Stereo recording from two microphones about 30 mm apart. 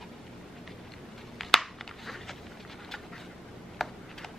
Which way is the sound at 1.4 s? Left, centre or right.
Centre.